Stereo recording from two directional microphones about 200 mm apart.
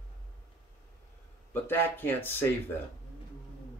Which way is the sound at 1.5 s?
10° left (ahead or behind).